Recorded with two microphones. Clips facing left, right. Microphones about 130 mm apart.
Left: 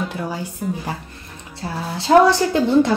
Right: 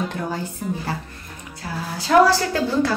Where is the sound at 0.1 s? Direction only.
10° left (ahead or behind).